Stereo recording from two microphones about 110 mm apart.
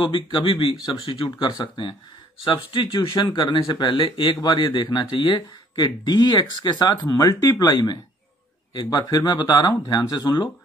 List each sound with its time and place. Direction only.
0.0 s speech: 45° left (ahead or behind)